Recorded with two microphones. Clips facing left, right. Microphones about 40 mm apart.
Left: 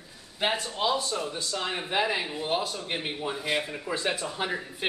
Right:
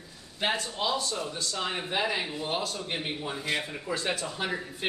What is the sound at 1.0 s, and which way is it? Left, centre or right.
Speech, left.